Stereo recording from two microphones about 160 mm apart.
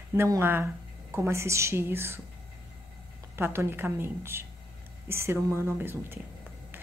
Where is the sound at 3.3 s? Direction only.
15° right (ahead or behind).